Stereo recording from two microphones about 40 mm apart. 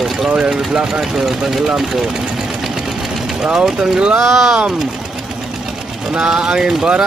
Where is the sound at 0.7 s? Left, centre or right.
Centre.